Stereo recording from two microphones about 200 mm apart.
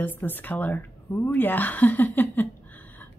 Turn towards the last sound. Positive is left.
turn(degrees=10)  # may be behind; listen again after turning